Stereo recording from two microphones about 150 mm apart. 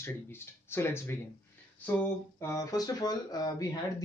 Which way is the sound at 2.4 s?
20° left (ahead or behind).